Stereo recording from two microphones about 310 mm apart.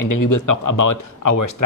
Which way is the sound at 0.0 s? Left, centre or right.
Left.